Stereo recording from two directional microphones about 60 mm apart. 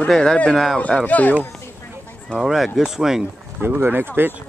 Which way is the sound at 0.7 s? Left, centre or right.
Centre.